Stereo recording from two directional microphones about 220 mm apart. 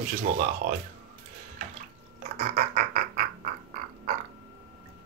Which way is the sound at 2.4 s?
45° right (ahead or behind).